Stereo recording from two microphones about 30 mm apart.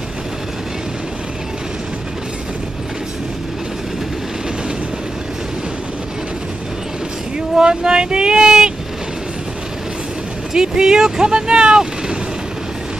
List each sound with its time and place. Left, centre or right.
7.3 s speech: right
10.5 s speech: right